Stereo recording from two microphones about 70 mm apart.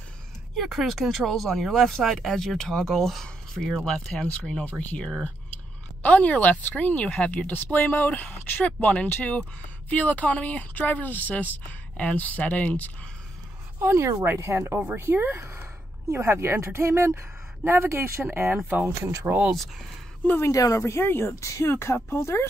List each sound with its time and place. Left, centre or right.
0.6 s speech: centre; by 8.1 s left
8.1 s speech: left
13.7 s speech: right
15.0 s speech: right
20.4 s speech: left